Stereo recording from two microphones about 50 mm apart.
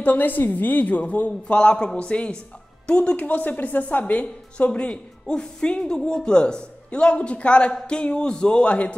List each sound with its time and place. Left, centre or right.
0.0 s a woman's voice: left